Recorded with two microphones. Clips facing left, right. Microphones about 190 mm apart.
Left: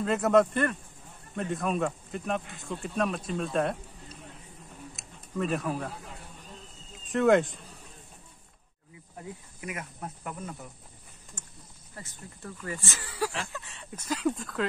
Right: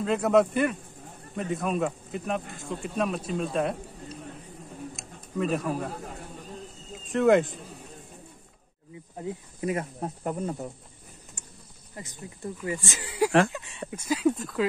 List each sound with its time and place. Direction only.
0.0 s speech: centre (ahead or behind)
4.9 s a sound: centre (ahead or behind)
7.1 s speech: centre (ahead or behind)
9.6 s speech: 35° right (ahead or behind)
11.4 s a sound: 10° right (ahead or behind)
12.0 s speech: 15° right (ahead or behind)